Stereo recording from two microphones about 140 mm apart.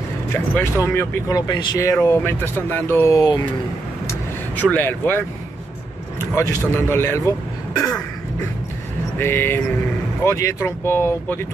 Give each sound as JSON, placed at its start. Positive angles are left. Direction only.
{"t": 0.6, "sound": "speech", "side_deg": 15}
{"t": 4.1, "sound": "vehicle", "side_deg": 10}
{"t": 6.7, "sound": "speech", "side_deg": 15}
{"t": 9.2, "sound": "speech", "side_deg": 15}